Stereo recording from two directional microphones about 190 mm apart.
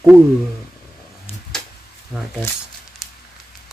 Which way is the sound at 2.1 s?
5° right (ahead or behind).